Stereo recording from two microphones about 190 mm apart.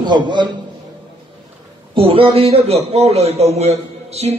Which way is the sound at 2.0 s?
30° right (ahead or behind).